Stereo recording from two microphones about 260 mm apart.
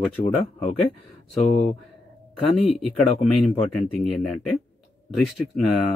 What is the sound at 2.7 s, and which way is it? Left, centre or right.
Speech, centre.